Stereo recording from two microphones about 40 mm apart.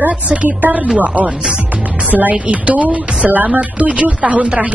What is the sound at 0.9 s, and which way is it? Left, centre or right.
Speech, right.